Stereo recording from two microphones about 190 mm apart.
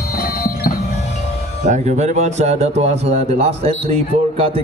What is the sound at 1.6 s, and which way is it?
Speech, 40° right (ahead or behind).